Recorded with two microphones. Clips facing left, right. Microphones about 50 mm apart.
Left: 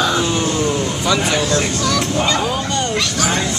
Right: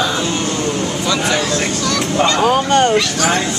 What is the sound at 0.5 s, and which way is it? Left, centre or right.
Vehicle, centre.